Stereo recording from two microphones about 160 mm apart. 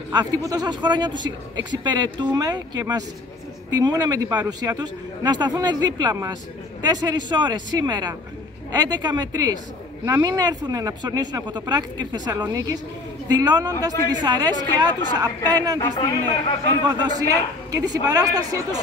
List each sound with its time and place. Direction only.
0.1 s speech: 25° right (ahead or behind)
16.0 s a man's voice: 25° left (ahead or behind)
16.8 s speech: 25° right (ahead or behind)